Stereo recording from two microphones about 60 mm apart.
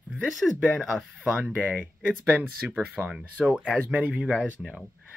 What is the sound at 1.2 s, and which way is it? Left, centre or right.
Speech, centre.